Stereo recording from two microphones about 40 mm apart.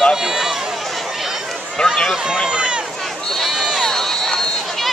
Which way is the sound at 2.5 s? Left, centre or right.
Right.